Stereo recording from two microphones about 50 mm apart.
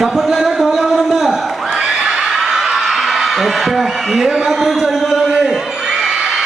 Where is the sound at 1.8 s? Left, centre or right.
Centre.